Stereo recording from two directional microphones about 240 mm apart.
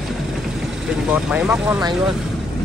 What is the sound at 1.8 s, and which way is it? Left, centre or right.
Speech, centre.